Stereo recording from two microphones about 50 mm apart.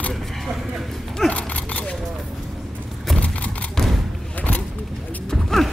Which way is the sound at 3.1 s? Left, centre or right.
Left.